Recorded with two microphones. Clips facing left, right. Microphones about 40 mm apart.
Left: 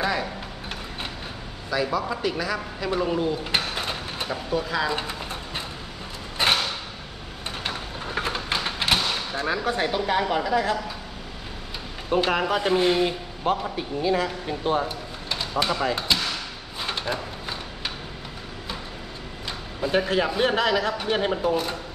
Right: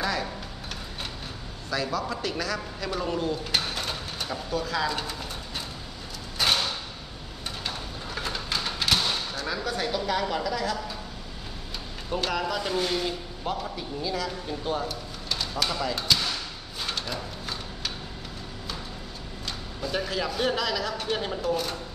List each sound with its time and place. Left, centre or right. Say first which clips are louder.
1.7 s speech: left 4 dB; centre
6.3 s mechanisms: left 3 dB; left
7.6 s a sound: left 5 dB; left
12.1 s speech: left 6 dB; left
16.8 s a sound: left 4 dB; left
19.4 s speech: left 5 dB; left